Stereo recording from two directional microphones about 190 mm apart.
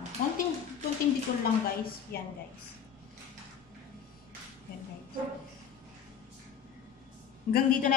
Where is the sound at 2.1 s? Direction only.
55° left (ahead or behind).